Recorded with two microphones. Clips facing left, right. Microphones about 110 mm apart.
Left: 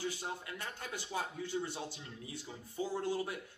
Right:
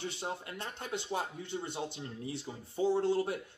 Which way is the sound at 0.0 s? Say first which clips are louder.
Right 2 dB; 25° right (ahead or behind).